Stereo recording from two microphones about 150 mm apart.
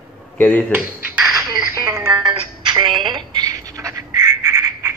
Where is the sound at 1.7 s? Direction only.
20° right (ahead or behind).